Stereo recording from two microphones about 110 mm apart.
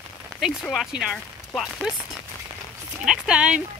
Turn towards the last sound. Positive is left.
turn(degrees=-10)  # may be behind; listen again after turning